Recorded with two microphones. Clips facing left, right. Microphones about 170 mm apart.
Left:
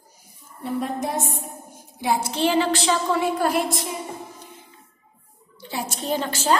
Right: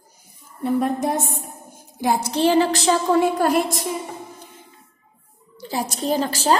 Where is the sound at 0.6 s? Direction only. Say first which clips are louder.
Right 5 dB; 55° right (ahead or behind).